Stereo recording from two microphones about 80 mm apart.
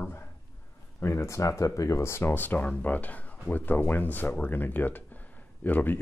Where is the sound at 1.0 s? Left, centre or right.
Left.